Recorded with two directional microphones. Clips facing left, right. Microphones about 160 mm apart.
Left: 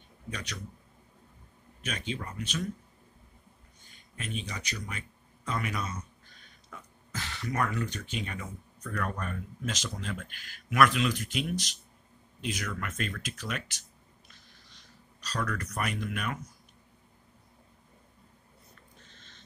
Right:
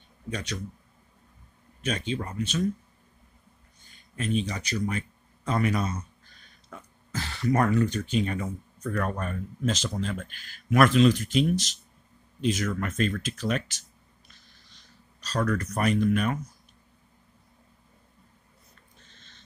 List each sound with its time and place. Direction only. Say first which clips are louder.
0.3 s a man's voice: right 6 dB; 25° right (ahead or behind)
1.9 s speech: right 6 dB; 35° right (ahead or behind)
4.2 s speech: right 10 dB; 35° right (ahead or behind)
7.1 s speech: right 9 dB; 35° right (ahead or behind)
9.2 s speech: right 6 dB; 30° right (ahead or behind)
12.6 s speech: right 8 dB; 35° right (ahead or behind)
15.2 s speech: right 7 dB; 35° right (ahead or behind)